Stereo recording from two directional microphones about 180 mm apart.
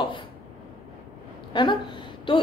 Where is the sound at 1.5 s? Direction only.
25° left (ahead or behind).